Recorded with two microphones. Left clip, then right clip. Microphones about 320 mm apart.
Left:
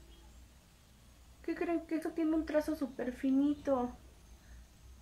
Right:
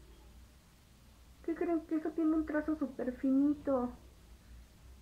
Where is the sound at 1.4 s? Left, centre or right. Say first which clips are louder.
Right 1 dB; centre.